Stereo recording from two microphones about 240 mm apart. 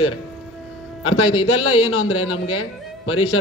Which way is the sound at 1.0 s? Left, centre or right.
Left.